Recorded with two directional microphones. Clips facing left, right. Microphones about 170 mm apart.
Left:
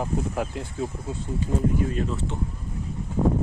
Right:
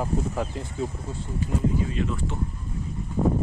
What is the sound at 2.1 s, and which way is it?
Speech, 25° left (ahead or behind).